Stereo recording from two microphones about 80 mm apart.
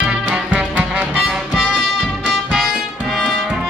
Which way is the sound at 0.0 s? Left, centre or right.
Centre.